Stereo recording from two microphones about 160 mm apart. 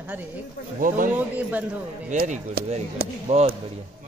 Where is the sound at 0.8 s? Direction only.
60° right (ahead or behind).